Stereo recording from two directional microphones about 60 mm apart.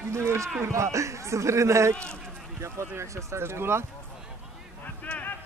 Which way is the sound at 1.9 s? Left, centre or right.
Centre.